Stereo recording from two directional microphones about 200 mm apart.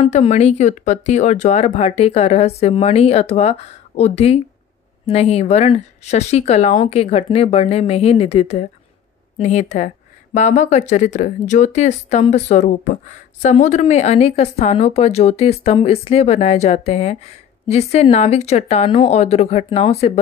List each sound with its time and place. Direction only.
0.0 s speech: 30° left (ahead or behind)